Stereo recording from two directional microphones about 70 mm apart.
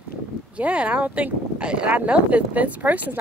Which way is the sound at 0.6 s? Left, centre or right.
Centre.